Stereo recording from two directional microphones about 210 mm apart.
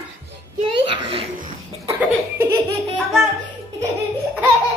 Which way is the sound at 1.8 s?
15° right (ahead or behind).